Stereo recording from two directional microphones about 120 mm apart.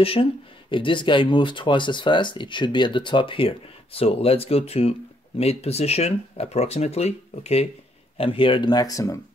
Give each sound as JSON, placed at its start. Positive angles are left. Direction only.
{"t": 0.0, "sound": "speech", "side_deg": 50}
{"t": 8.2, "sound": "speech", "side_deg": 45}